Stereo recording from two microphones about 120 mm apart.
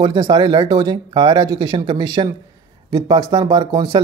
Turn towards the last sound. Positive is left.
turn(degrees=-35)  # may be behind; listen again after turning